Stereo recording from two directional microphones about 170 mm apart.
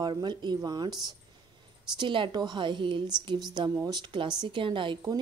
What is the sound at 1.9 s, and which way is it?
A woman's voice, 30° right (ahead or behind).